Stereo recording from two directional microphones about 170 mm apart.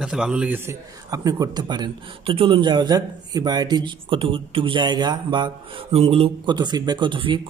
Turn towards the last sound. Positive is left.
turn(degrees=-30)  # may be behind; listen again after turning